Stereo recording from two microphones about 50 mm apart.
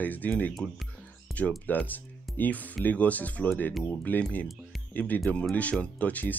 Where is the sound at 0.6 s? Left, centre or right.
Centre.